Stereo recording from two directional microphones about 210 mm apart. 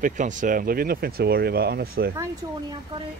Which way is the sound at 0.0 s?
35° right (ahead or behind).